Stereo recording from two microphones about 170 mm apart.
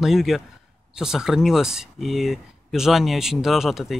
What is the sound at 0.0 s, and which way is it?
Speech, centre (ahead or behind).